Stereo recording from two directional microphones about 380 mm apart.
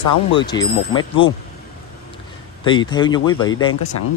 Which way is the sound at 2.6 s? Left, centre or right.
Centre.